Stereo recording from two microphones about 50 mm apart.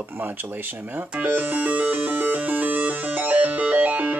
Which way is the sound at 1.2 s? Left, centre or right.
Right.